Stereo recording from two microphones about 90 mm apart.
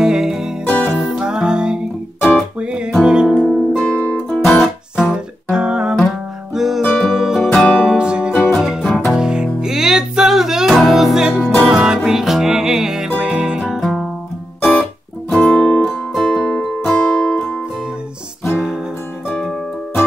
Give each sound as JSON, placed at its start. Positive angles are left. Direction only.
{"t": 0.0, "sound": "music", "side_deg": -5}
{"t": 0.7, "sound": "music", "side_deg": 20}
{"t": 1.0, "sound": "music", "side_deg": -10}
{"t": 4.9, "sound": "music", "side_deg": -10}
{"t": 7.5, "sound": "music", "side_deg": 15}
{"t": 7.8, "sound": "music", "side_deg": -10}
{"t": 9.1, "sound": "music", "side_deg": -10}
{"t": 14.6, "sound": "music", "side_deg": 15}
{"t": 19.2, "sound": "music", "side_deg": -5}